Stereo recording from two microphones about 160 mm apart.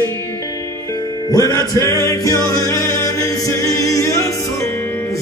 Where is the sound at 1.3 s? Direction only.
25° left (ahead or behind).